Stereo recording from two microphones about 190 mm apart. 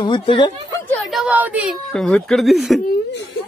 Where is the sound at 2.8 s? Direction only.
60° left (ahead or behind).